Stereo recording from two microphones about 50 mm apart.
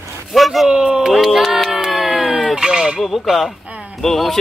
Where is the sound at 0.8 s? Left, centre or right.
Centre.